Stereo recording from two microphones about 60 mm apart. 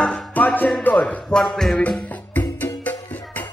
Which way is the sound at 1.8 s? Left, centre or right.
Left.